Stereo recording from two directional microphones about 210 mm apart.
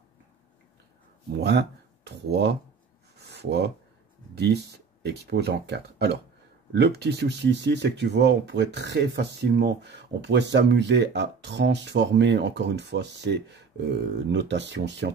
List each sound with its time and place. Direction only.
1.4 s speech: 55° right (ahead or behind)
3.2 s a sound: 50° right (ahead or behind)
5.0 s speech: 50° right (ahead or behind)